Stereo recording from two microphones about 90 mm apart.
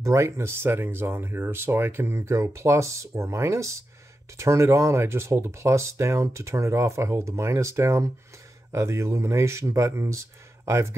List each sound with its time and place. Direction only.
0.0 s speech: 35° right (ahead or behind)